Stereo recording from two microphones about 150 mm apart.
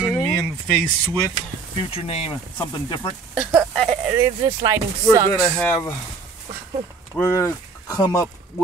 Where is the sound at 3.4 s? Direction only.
10° right (ahead or behind).